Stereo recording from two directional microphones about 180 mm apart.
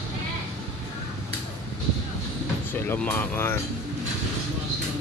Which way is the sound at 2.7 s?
10° left (ahead or behind).